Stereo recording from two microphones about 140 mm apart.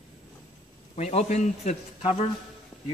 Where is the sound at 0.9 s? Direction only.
50° left (ahead or behind).